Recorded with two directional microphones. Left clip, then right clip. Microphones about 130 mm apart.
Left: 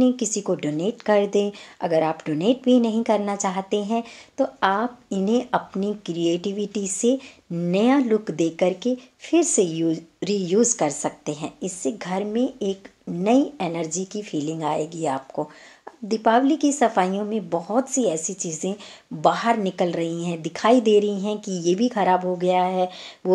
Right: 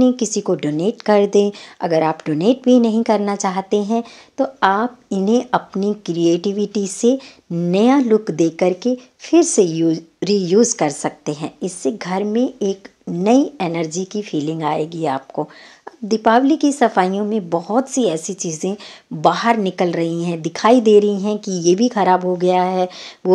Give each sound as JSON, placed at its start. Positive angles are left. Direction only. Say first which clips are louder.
{"t": 0.0, "sound": "speech", "louder": "right 5 dB", "side_deg": -35}